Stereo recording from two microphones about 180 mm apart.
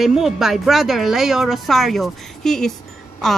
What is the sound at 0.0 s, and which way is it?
A woman's voice, centre (ahead or behind).